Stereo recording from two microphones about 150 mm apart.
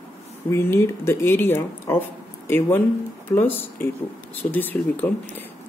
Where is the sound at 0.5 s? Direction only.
15° left (ahead or behind).